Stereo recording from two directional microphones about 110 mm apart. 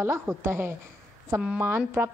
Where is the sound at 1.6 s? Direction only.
20° right (ahead or behind).